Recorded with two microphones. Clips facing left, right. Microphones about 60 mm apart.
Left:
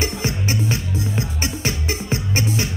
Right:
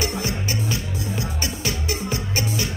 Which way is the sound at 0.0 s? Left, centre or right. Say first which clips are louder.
Left 2 dB; left.